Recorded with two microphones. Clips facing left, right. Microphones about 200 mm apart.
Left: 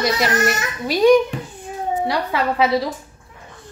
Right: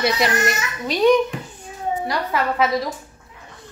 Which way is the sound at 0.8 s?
10° left (ahead or behind).